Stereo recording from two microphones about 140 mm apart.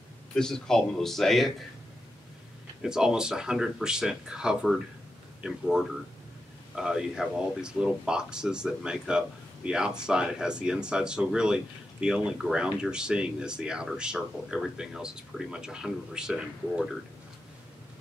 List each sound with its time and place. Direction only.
0.3 s speech: 5° left (ahead or behind)
2.8 s speech: 5° right (ahead or behind)